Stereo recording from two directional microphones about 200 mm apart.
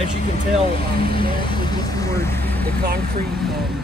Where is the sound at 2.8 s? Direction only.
50° right (ahead or behind).